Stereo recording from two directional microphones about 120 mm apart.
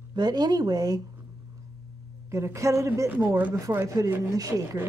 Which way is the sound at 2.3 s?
25° right (ahead or behind).